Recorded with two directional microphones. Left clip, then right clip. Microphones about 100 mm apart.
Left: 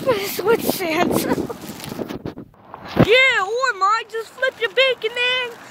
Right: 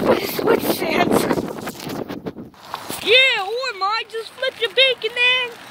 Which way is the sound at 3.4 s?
15° left (ahead or behind).